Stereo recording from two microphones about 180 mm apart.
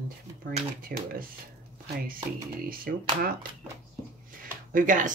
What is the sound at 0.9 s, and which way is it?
Speech, 55° right (ahead or behind).